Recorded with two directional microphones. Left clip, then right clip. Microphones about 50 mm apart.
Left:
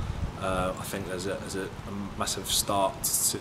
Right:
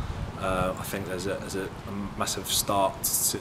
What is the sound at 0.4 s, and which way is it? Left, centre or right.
Speech, centre.